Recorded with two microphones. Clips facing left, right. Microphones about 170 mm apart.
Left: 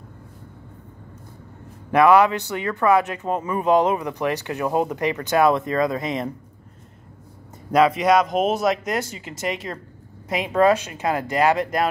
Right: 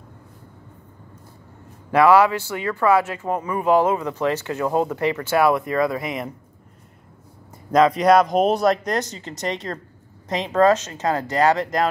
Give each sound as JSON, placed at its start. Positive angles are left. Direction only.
{"t": 1.9, "sound": "speech", "side_deg": 20}
{"t": 7.7, "sound": "speech", "side_deg": 5}